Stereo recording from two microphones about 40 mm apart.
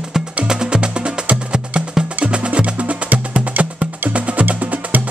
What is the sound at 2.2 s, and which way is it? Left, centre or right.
Music, right.